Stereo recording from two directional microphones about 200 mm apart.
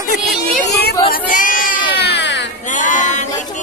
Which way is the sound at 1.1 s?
40° left (ahead or behind).